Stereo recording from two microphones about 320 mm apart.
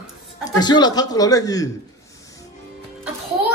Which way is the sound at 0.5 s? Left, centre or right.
Centre.